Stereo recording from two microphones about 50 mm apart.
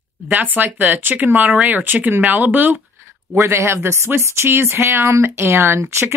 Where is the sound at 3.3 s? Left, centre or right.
Right.